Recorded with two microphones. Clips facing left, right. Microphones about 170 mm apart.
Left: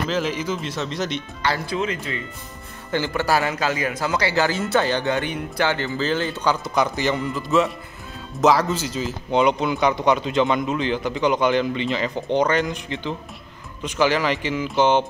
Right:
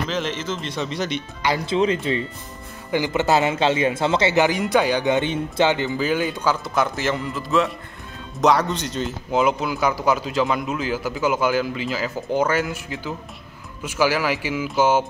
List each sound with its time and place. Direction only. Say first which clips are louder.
0.1 s speech: left 2 dB; 10° left (ahead or behind)
1.4 s speech: right 2 dB; 15° right (ahead or behind)
2.1 s a man's voice: right 7 dB; 30° right (ahead or behind)
2.9 s a man's voice: right 2 dB; 15° right (ahead or behind)